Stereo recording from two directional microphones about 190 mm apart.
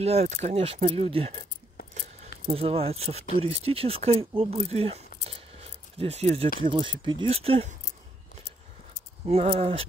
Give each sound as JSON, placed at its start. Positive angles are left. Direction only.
{"t": 0.0, "sound": "speech", "side_deg": -35}
{"t": 5.3, "sound": "keys jangling", "side_deg": -30}
{"t": 6.6, "sound": "speech", "side_deg": -25}
{"t": 9.2, "sound": "speech", "side_deg": -30}